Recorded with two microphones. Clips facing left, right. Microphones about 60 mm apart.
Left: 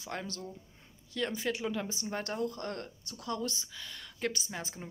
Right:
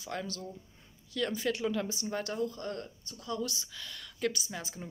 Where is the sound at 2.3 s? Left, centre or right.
Left.